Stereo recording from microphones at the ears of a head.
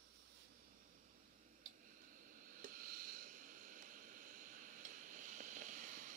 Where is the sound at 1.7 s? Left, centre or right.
Right.